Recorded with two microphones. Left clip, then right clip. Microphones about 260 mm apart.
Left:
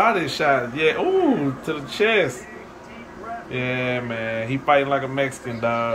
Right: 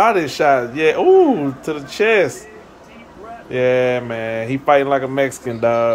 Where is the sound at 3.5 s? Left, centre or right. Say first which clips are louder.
Right 10 dB; centre.